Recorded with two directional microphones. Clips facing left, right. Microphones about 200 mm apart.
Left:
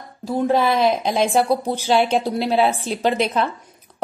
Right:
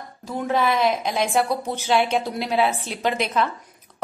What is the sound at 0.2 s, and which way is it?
A woman's voice, 30° left (ahead or behind).